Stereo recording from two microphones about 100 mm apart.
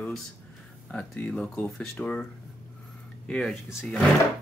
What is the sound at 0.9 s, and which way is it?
Speech, 10° left (ahead or behind).